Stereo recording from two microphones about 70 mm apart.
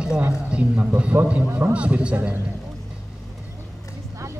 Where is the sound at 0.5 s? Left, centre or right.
Centre.